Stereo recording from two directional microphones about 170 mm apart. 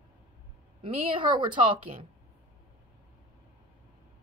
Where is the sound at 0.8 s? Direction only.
30° right (ahead or behind).